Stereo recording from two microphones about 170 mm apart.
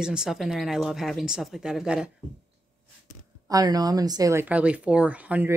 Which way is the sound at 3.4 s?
20° right (ahead or behind).